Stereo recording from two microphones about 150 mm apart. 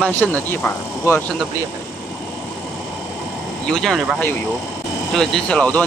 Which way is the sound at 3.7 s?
Centre (ahead or behind).